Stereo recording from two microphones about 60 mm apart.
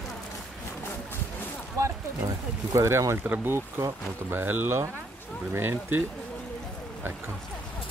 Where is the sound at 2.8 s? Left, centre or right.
Right.